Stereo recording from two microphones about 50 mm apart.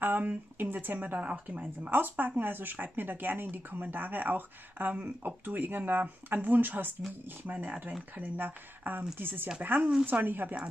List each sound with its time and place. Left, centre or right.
0.0 s speech: right
1.6 s speech: right
9.8 s speech: centre
10.0 s speech: right